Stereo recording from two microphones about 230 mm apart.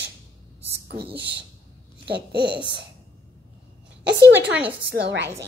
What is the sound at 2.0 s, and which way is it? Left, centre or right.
Babbling, right.